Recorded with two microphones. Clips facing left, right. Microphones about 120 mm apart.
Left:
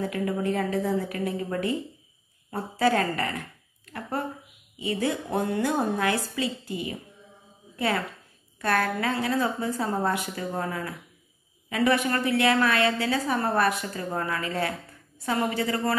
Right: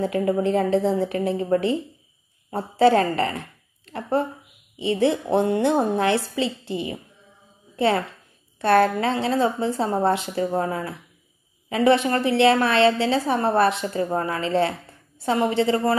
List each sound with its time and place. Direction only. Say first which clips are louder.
0.0 s a woman's voice: right 6 dB; 25° right (ahead or behind)
7.7 s a sound: right 6 dB; 30° right (ahead or behind)
8.5 s a woman's voice: right 8 dB; 25° right (ahead or behind)